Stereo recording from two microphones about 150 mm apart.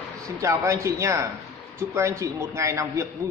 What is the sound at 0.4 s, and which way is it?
A man's voice, 20° right (ahead or behind).